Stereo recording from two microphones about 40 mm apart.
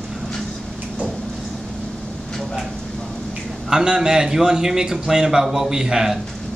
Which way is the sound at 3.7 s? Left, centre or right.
Centre.